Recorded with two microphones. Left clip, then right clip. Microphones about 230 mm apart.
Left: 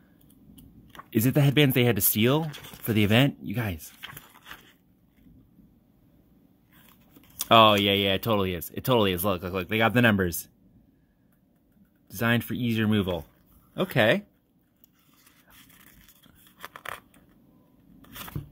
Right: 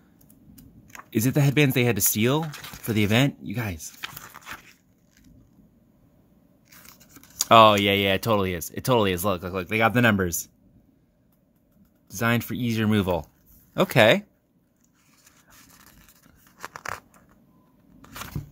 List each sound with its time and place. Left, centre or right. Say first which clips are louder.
1.1 s speech: even; centre
7.3 s speech: right 3 dB; centre
12.1 s speech: right 1 dB; centre
16.5 s scissors: right 4 dB; centre